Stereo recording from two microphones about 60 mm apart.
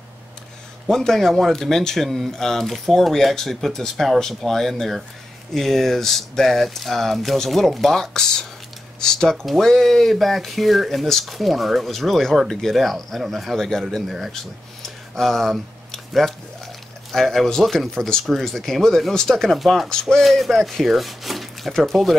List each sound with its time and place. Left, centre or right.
0.8 s speech: centre
15.1 s speech: centre
19.9 s speech: centre